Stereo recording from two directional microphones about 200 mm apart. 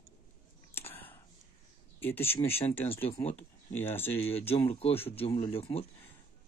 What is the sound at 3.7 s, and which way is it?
Speech, 10° left (ahead or behind).